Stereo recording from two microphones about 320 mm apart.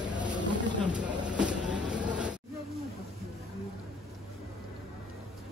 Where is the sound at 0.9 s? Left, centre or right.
Centre.